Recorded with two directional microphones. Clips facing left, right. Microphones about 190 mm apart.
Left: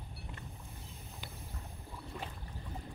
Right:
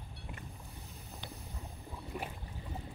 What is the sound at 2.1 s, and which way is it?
Boat, 15° right (ahead or behind).